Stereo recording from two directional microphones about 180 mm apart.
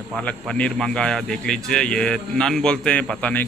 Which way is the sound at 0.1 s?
5° left (ahead or behind).